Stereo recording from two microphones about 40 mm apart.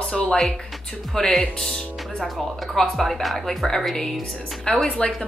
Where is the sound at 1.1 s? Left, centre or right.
Centre.